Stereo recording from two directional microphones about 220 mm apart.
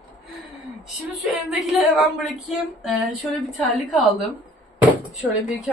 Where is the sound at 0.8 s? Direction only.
Centre (ahead or behind).